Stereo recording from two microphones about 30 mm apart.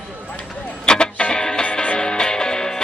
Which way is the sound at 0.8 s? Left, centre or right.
Left.